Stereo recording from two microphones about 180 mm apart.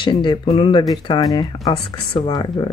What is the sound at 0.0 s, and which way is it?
Speech, 25° left (ahead or behind).